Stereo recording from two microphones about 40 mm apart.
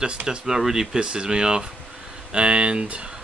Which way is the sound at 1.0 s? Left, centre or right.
Right.